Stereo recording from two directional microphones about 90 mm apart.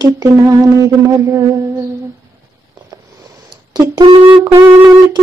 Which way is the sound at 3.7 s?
50° right (ahead or behind).